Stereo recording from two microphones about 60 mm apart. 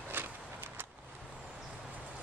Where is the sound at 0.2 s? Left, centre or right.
Right.